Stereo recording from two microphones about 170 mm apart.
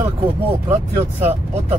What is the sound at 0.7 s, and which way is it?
Speech, 15° right (ahead or behind).